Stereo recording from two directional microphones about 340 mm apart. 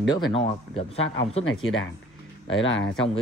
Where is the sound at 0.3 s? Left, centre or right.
Centre.